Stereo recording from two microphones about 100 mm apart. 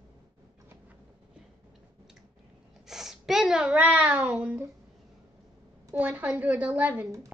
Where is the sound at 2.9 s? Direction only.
5° right (ahead or behind).